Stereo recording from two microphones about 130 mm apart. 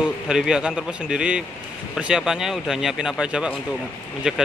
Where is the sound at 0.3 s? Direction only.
5° right (ahead or behind).